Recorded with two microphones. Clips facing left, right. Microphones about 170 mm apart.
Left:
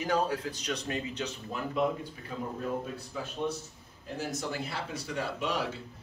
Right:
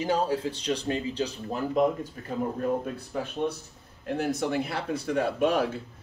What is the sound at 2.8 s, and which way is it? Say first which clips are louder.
Speech: right 5 dB; 55° right (ahead or behind).